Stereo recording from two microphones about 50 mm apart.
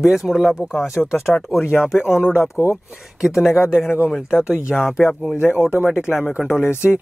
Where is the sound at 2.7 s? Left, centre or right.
Centre.